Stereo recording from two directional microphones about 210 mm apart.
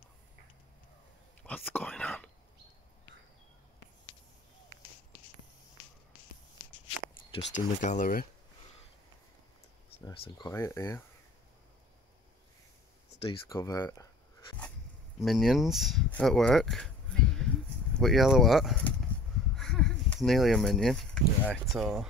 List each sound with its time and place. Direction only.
1.4 s whispering: 10° left (ahead or behind)
7.5 s speech: 35° left (ahead or behind)
10.2 s speech: 20° left (ahead or behind)
13.5 s speech: 15° left (ahead or behind)
15.1 s speech: centre (ahead or behind)